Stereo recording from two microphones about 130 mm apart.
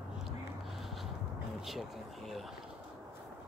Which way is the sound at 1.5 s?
Centre (ahead or behind).